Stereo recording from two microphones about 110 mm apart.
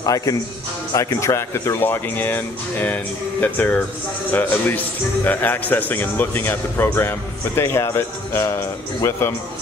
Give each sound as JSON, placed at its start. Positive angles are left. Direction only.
{"t": 0.0, "sound": "a man's voice", "side_deg": 30}